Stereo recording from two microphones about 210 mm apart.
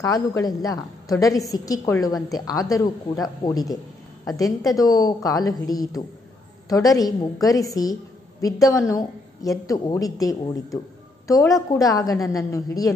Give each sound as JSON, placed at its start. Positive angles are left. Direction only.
{"t": 0.0, "sound": "a woman's voice", "side_deg": 15}